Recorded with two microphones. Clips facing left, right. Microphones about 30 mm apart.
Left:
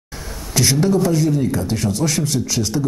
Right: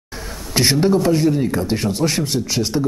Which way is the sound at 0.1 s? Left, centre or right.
Centre.